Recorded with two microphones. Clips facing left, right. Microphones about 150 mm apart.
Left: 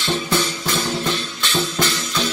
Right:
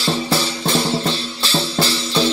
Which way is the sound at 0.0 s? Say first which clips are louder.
Right 2 dB; 35° right (ahead or behind).